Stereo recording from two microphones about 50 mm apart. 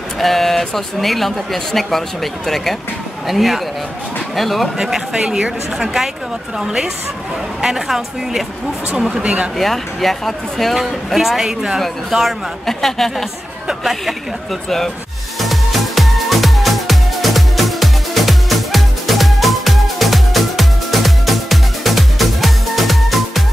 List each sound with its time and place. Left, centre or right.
0.2 s speech: centre
4.7 s speech: centre
9.2 s speech: right
9.6 s speech: centre
12.6 s speech: centre
15.4 s music: centre